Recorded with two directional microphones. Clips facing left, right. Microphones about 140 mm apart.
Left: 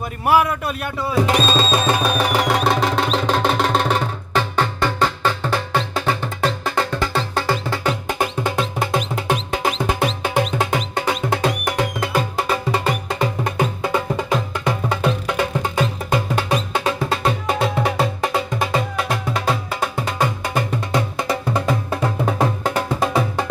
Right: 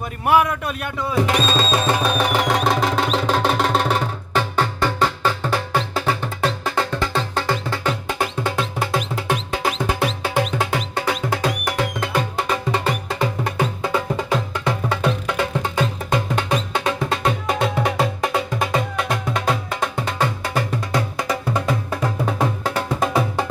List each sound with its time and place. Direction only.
0.2 s speech: 5° left (ahead or behind)
1.1 s music: 30° left (ahead or behind)
2.1 s music: 5° left (ahead or behind); by 22.3 s 25° left (ahead or behind)
22.8 s music: centre (ahead or behind)